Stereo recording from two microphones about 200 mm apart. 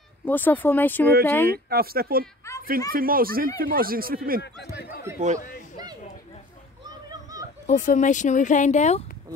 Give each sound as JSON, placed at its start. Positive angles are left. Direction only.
{"t": 0.2, "sound": "speech", "side_deg": 10}
{"t": 1.5, "sound": "speech", "side_deg": -50}
{"t": 2.4, "sound": "a sound", "side_deg": 15}
{"t": 2.9, "sound": "speech", "side_deg": -45}
{"t": 5.1, "sound": "chatter", "side_deg": -10}
{"t": 7.1, "sound": "a sound", "side_deg": -15}
{"t": 7.6, "sound": "speech", "side_deg": 40}